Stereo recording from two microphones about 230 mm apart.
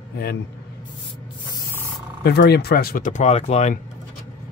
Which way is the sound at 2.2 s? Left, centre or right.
Left.